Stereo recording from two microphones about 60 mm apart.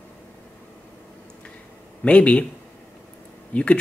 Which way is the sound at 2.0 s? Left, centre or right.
Centre.